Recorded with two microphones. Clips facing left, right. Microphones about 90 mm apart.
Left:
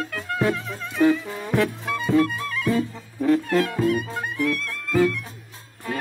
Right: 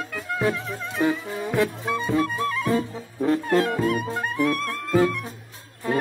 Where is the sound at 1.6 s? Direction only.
25° right (ahead or behind).